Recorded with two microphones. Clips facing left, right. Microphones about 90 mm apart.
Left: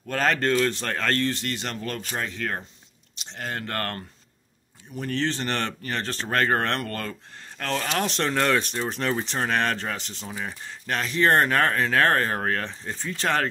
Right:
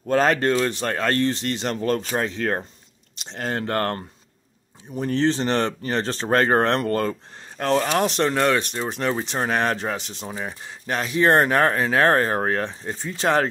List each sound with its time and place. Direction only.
0.0 s speech: 20° right (ahead or behind)
1.2 s speech: 25° right (ahead or behind)